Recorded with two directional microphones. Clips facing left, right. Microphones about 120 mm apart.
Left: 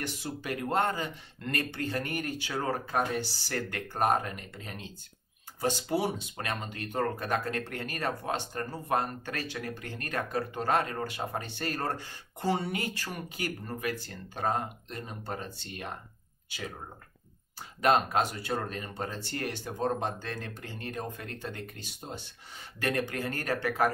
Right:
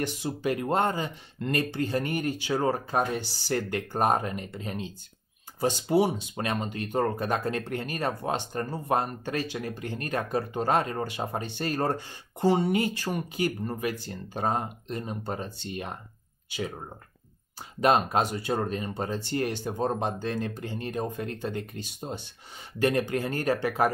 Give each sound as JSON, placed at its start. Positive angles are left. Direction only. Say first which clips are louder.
{"t": 0.0, "sound": "speech", "louder": "right 7 dB", "side_deg": -20}
{"t": 17.7, "sound": "speech", "louder": "right 2 dB", "side_deg": -25}